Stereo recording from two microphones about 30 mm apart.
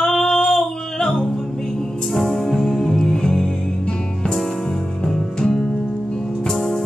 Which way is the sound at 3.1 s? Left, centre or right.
Left.